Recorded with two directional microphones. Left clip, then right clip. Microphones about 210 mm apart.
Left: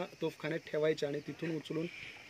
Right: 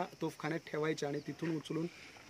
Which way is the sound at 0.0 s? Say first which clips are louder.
Left 1 dB; 20° right (ahead or behind).